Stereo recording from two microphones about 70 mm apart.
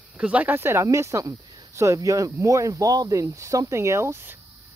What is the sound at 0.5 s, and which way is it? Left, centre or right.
Speech, right.